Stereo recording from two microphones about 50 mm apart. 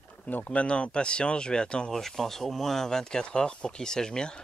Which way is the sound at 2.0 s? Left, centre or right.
Centre.